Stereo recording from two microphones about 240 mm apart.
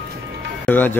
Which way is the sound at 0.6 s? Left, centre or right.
Centre.